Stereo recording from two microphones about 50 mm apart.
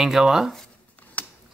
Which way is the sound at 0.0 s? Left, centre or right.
Centre.